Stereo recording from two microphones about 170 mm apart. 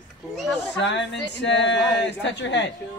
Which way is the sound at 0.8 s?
90° left.